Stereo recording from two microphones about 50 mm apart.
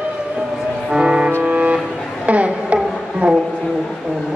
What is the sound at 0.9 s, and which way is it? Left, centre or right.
Music, centre.